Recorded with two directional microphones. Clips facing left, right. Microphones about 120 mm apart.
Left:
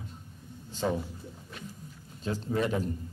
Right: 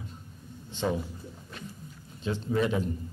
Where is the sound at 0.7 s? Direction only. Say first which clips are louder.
Even; 40° left (ahead or behind).